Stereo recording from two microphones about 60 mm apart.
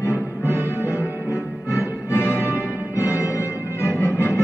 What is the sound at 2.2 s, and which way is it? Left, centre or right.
Music, right.